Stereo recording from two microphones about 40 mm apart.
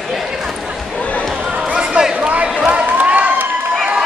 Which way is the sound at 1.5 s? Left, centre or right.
Right.